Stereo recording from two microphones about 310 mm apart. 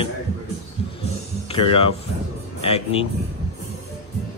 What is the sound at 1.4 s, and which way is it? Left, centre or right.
Speech, centre.